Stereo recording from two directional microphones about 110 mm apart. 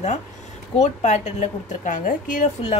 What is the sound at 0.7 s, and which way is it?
Speech, 90° left.